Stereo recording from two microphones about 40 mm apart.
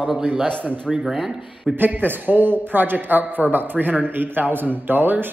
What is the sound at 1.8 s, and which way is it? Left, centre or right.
A man's voice, right.